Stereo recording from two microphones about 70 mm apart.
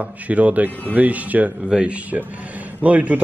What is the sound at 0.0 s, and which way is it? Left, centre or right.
A man's voice, right.